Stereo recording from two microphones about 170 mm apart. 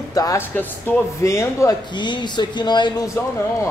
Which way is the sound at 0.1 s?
20° left (ahead or behind).